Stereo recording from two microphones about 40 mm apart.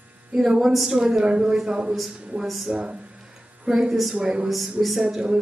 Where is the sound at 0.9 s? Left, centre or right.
Centre.